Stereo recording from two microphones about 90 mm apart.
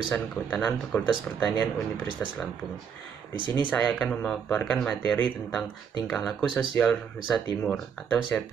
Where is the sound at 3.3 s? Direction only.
65° right (ahead or behind).